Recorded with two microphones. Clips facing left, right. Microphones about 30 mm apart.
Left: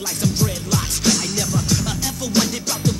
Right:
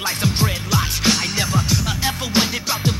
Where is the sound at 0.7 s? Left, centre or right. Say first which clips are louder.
Right 1 dB; right.